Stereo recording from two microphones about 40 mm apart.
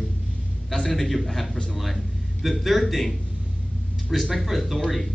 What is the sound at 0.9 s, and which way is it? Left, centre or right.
Speech, centre.